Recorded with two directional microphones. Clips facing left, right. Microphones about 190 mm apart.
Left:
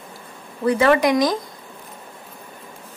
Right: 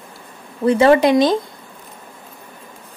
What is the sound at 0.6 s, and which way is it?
Speech, 25° right (ahead or behind).